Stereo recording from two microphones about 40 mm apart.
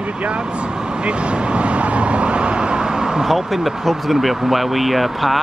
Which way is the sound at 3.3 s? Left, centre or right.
Centre.